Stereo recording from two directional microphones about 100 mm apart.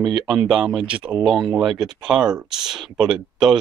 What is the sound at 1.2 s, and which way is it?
Speech, 5° right (ahead or behind).